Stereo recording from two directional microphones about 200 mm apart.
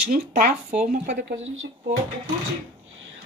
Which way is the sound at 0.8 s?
40° right (ahead or behind).